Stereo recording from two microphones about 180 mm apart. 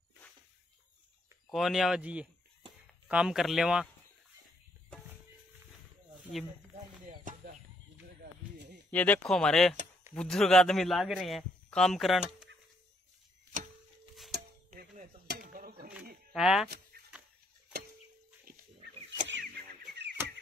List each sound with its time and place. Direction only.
1.5 s speech: centre (ahead or behind)
7.1 s a sound: 55° right (ahead or behind)
8.2 s snake: 70° right (ahead or behind)
8.9 s speech: 10° left (ahead or behind)
14.3 s music: 50° right (ahead or behind)
16.3 s speech: 5° right (ahead or behind)
16.9 s a sound: 60° right (ahead or behind)
19.4 s chicken: 65° right (ahead or behind)